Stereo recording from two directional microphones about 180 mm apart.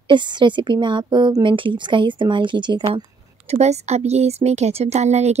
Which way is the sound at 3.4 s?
35° right (ahead or behind).